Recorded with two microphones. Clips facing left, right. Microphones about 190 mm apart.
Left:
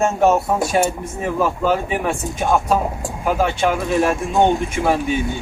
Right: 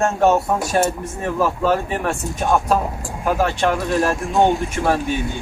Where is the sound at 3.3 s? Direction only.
15° left (ahead or behind).